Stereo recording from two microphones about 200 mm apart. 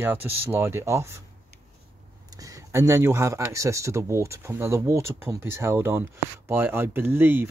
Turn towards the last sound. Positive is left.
turn(degrees=-10)  # may be behind; listen again after turning